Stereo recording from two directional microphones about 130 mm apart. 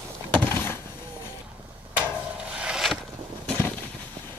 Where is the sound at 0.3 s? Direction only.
15° left (ahead or behind).